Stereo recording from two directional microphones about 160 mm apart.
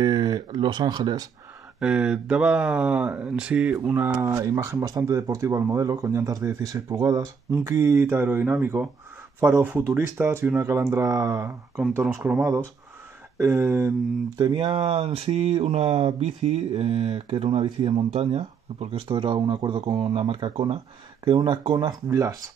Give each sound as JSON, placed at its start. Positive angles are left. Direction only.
{"t": 0.0, "sound": "speech", "side_deg": -30}
{"t": 1.8, "sound": "speech", "side_deg": -5}
{"t": 12.0, "sound": "speech", "side_deg": -5}
{"t": 14.4, "sound": "speech", "side_deg": -30}